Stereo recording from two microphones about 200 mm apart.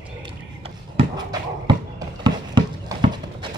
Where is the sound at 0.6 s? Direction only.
25° right (ahead or behind).